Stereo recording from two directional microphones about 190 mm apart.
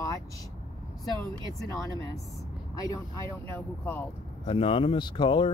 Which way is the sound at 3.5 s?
10° left (ahead or behind).